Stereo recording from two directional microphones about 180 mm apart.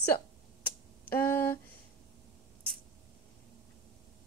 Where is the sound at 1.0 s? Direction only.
10° left (ahead or behind).